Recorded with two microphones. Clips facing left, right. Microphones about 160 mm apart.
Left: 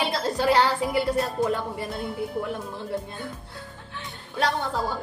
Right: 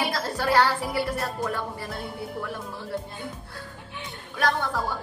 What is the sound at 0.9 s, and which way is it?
Speech, 20° left (ahead or behind).